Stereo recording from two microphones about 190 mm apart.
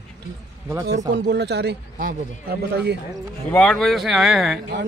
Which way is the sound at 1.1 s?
60° right (ahead or behind).